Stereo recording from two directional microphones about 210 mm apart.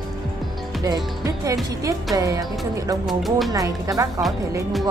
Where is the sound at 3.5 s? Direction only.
15° right (ahead or behind).